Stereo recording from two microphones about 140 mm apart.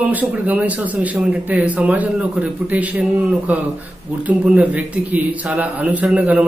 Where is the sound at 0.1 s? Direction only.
10° right (ahead or behind).